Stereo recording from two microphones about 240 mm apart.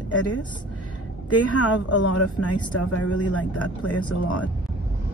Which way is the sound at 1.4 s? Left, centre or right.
Left.